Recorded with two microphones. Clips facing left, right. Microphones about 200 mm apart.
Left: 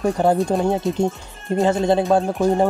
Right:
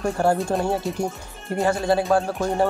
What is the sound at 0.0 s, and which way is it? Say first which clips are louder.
Speech: left 3 dB; 20° left (ahead or behind).